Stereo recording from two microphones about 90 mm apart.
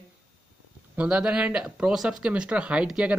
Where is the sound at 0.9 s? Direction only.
10° right (ahead or behind).